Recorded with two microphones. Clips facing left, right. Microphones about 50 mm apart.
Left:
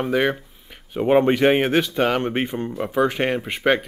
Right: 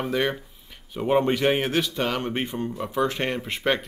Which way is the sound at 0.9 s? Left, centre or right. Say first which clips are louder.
Left 5 dB; left.